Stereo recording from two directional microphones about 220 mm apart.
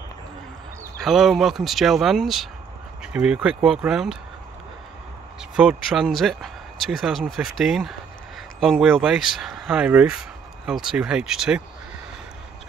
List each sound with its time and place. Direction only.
1.0 s speech: centre (ahead or behind)
5.6 s speech: 5° right (ahead or behind)